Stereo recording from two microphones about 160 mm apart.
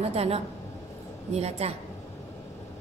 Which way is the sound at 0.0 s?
40° right (ahead or behind).